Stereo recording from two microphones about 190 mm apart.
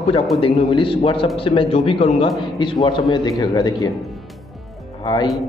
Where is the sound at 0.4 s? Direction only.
30° left (ahead or behind).